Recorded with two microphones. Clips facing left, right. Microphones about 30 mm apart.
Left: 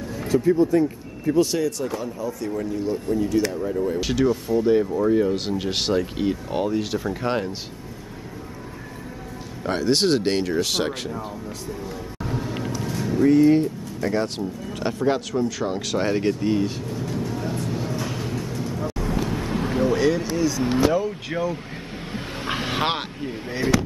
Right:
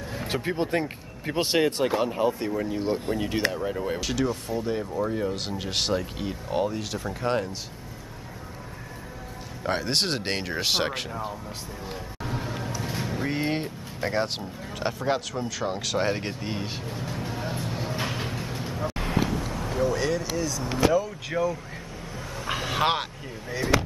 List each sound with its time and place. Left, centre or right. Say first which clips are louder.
0.3 s speech: left 9 dB; right
4.0 s speech: left 6 dB; centre
9.6 s speech: left 5 dB; centre
10.5 s speech: left 3 dB; right
12.8 s music: left 4 dB; right
13.2 s speech: left 13 dB; right
14.7 s speech: left 3 dB; centre
17.9 s vehicle: left 2 dB; right
19.5 s a sound: left 6 dB; left
20.3 s vehicle: left 6 dB; centre
20.6 s speech: left 1 dB; left
21.3 s speech: right 2 dB; left
22.1 s a sound: left 3 dB; left
22.7 s speech: right 2 dB; left